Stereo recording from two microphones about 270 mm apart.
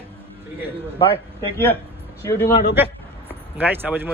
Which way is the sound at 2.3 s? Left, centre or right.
Centre.